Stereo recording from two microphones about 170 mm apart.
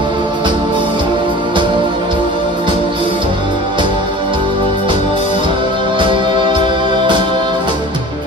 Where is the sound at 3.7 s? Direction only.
30° right (ahead or behind).